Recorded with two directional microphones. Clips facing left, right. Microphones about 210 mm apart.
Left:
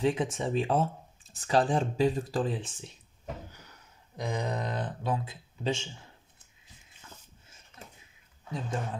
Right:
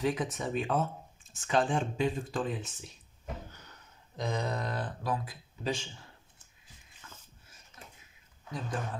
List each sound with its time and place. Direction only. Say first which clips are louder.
0.0 s speech: left 3 dB; 25° left (ahead or behind)
4.2 s speech: left 1 dB; 15° left (ahead or behind)
7.7 s a sound: left 3 dB; 60° left (ahead or behind)
8.5 s speech: left 2 dB; 25° left (ahead or behind)